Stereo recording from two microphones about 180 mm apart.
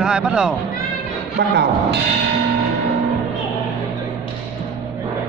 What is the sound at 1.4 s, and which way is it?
Speech, 75° right (ahead or behind).